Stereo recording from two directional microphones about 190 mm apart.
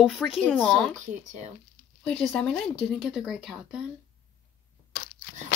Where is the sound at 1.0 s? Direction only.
40° right (ahead or behind).